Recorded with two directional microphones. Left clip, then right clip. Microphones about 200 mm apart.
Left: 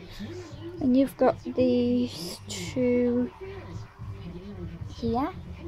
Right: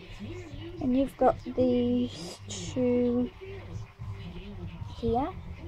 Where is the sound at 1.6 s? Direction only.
10° left (ahead or behind).